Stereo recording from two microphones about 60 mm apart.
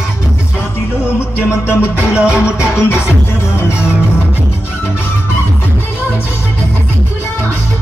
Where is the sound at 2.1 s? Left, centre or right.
Centre.